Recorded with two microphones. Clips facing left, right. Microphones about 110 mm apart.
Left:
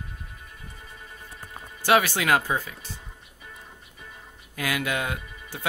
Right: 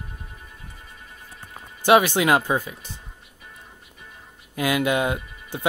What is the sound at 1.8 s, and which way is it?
Speech, 20° right (ahead or behind).